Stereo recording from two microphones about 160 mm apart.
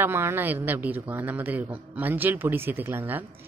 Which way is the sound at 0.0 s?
15° right (ahead or behind).